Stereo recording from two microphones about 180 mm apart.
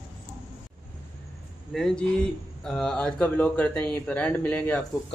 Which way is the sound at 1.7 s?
Centre (ahead or behind).